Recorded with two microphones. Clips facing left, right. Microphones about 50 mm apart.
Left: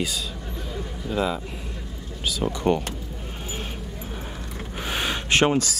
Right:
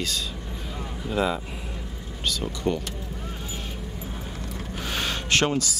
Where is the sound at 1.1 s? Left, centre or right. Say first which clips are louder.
Even; centre.